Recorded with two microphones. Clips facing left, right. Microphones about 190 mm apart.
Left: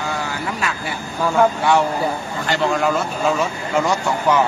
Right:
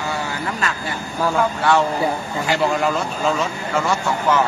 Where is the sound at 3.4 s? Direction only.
15° left (ahead or behind).